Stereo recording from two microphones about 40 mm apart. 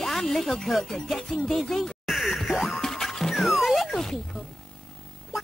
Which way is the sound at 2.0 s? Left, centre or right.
Centre.